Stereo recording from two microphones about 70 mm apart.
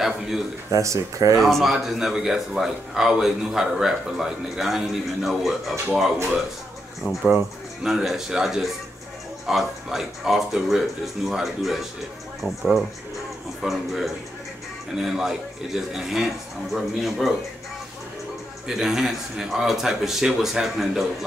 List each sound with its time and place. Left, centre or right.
0.7 s speech: right
1.4 s speech: centre
7.0 s speech: centre
18.7 s speech: centre